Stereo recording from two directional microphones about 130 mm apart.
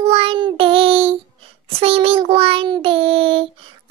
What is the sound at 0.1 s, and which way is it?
Child singing, 45° right (ahead or behind).